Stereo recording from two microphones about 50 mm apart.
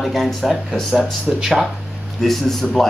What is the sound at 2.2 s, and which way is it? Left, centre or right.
Speech, centre.